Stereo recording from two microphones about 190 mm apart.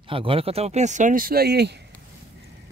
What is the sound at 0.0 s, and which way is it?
Speech, 30° right (ahead or behind).